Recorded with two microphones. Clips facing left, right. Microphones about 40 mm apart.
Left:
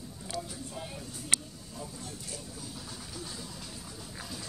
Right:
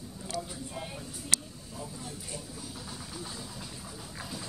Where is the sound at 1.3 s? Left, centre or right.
Left.